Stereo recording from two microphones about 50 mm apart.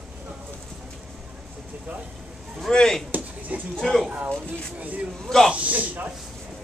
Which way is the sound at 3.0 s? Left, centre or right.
Right.